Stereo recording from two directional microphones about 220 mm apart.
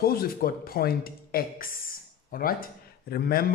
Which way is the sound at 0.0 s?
40° left (ahead or behind).